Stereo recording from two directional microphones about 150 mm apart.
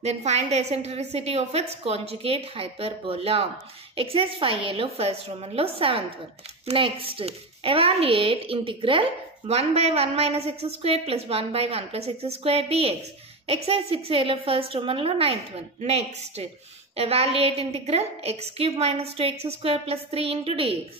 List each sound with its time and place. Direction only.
0.0 s a woman's voice: 45° right (ahead or behind)